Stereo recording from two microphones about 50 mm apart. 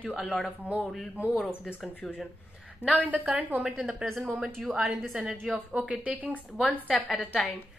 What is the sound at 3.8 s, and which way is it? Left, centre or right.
Speech, centre.